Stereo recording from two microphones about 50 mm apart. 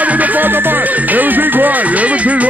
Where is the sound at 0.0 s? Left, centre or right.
Right.